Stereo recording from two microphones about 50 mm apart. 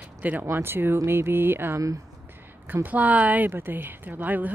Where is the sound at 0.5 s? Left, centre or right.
Right.